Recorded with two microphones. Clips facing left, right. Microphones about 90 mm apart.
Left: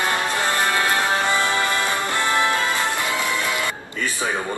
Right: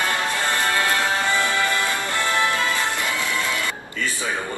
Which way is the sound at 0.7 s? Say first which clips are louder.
Left 1 dB; 20° left (ahead or behind).